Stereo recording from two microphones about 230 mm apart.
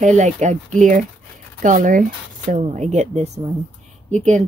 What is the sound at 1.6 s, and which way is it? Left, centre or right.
Speech, right.